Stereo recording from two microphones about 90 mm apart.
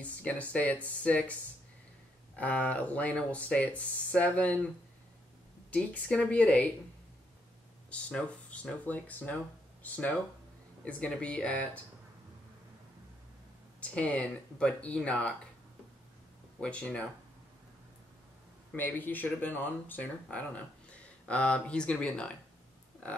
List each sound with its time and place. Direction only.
0.0 s speech: 15° left (ahead or behind)
2.3 s speech: 15° left (ahead or behind)
5.7 s speech: 15° left (ahead or behind)
7.9 s speech: 15° left (ahead or behind)
13.7 s speech: 15° left (ahead or behind)
16.5 s speech: 10° left (ahead or behind)
18.7 s speech: 20° left (ahead or behind)